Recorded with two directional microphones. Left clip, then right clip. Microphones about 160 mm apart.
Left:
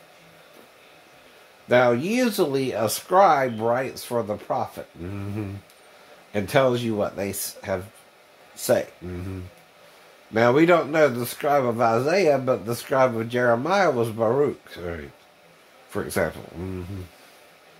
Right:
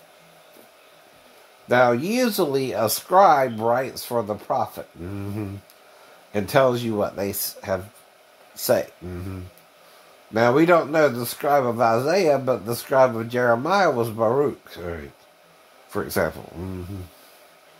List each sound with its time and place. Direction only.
1.7 s speech: 20° right (ahead or behind)
6.3 s speech: 15° right (ahead or behind)
10.3 s speech: 10° right (ahead or behind)